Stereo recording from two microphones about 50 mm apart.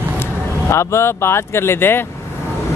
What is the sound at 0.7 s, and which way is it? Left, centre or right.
Speech, left.